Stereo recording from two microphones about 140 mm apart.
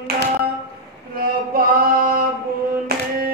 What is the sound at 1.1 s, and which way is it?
Male singing, 90° right.